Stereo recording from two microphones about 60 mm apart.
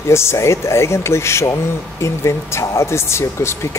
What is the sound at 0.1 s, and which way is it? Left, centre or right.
Speech, left.